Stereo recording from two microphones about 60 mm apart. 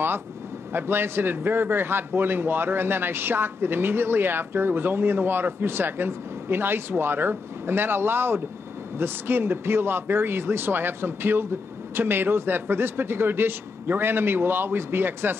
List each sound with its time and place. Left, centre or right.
0.7 s a man's voice: right